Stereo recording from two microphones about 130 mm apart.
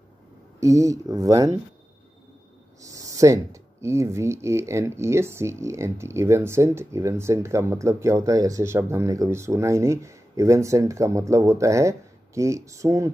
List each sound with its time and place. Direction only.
0.6 s speech: 25° right (ahead or behind)
2.8 s a sound: 25° right (ahead or behind)
3.8 s speech: 20° right (ahead or behind)